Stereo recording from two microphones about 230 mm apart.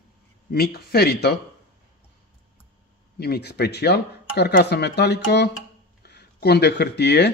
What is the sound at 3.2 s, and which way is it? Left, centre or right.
Speech, left.